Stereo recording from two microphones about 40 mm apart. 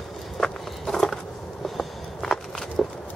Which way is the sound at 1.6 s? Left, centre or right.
Centre.